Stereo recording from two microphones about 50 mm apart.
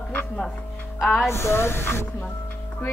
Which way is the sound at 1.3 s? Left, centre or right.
Left.